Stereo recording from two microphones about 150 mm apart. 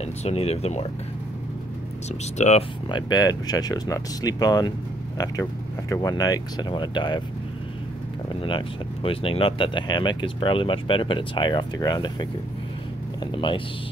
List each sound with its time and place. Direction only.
0.0 s speech: 45° left (ahead or behind)
2.0 s speech: 50° left (ahead or behind)
2.9 s speech: 25° left (ahead or behind)
8.4 s speech: 35° left (ahead or behind)